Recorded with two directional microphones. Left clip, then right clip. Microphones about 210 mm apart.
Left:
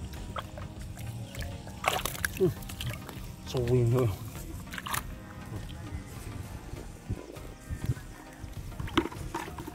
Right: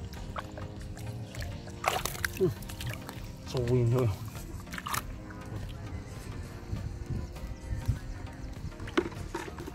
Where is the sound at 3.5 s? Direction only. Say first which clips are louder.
Left 1 dB; 5° right (ahead or behind).